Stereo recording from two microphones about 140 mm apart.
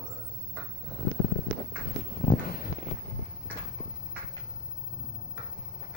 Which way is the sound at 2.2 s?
55° left (ahead or behind).